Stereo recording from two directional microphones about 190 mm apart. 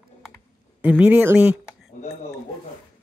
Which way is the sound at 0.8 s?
5° right (ahead or behind).